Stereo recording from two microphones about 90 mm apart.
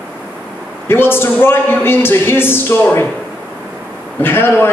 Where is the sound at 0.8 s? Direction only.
25° left (ahead or behind).